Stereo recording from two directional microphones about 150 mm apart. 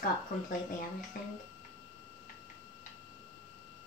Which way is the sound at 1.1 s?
70° left (ahead or behind).